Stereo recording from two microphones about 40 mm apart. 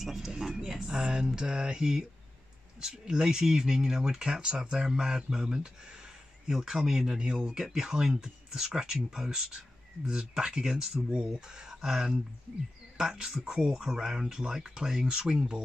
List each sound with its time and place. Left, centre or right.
0.0 s speech: centre; by 7.5 s right
7.5 s speech: centre